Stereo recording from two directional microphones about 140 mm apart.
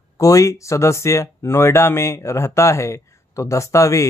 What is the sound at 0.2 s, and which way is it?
Speech, 25° left (ahead or behind).